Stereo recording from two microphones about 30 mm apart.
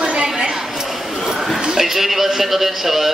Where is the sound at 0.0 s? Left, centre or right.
Right.